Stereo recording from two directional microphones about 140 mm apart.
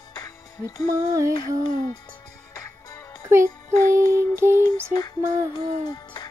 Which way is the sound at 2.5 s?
25° left (ahead or behind).